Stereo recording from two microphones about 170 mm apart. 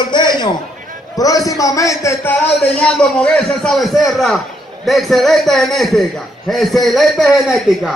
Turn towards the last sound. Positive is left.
turn(degrees=0)  # may be behind; listen again after turning